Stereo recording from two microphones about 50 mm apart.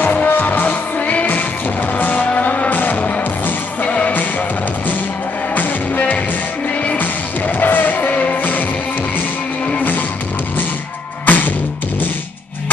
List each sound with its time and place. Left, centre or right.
0.0 s music: left
5.5 s music: left
9.8 s music: left
11.2 s music: left